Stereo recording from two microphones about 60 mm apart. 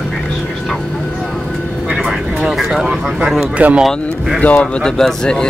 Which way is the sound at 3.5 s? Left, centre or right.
Right.